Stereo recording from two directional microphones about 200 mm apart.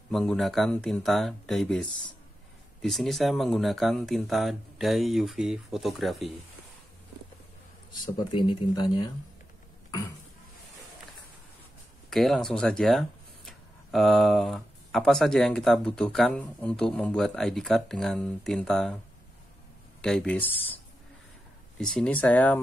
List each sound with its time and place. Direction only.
0.1 s speech: centre (ahead or behind)
7.9 s speech: 25° left (ahead or behind)
12.1 s speech: centre (ahead or behind)
20.0 s speech: 5° left (ahead or behind)